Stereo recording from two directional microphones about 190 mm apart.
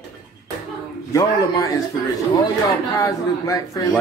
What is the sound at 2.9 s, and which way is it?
Speech, 20° left (ahead or behind).